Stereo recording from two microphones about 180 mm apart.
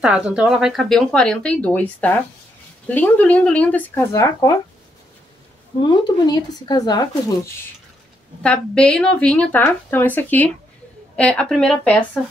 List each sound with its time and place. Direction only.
0.0 s speech: 5° right (ahead or behind); by 4.6 s 20° left (ahead or behind)
5.8 s speech: 25° left (ahead or behind)
8.4 s speech: 5° left (ahead or behind)